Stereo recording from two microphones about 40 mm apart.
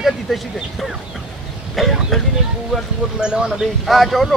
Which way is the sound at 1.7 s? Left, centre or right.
Centre.